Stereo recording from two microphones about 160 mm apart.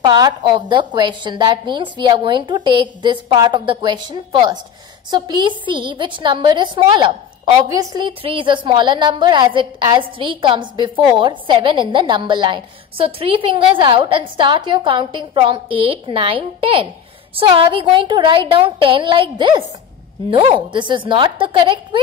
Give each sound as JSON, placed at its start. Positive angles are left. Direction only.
{"t": 0.0, "sound": "a woman's voice", "side_deg": -30}